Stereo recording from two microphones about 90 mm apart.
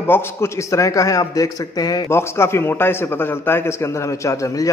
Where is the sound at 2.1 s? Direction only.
30° left (ahead or behind).